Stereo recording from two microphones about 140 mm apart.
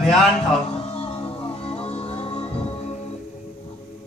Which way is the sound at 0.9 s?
45° left (ahead or behind).